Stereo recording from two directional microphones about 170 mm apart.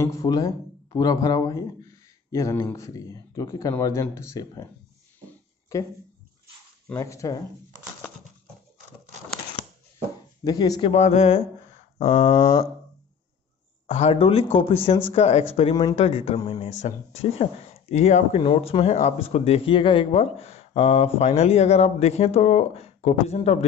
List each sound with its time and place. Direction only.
0.0 s speech: 20° left (ahead or behind)
5.7 s speech: 15° left (ahead or behind)
6.9 s speech: 20° left (ahead or behind)
10.4 s speech: 20° left (ahead or behind)
10.9 s speech: 40° left (ahead or behind)
12.0 s a sound: 45° left (ahead or behind)
12.4 s speech: 20° left (ahead or behind)
13.8 s speech: 40° left (ahead or behind)